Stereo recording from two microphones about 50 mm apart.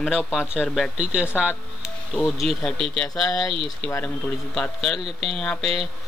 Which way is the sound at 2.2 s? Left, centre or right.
Centre.